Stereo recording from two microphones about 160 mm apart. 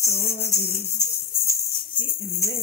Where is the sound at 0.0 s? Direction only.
15° left (ahead or behind).